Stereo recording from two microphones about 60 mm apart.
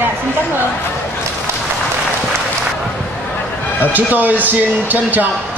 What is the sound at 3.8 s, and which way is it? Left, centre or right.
Speech, right.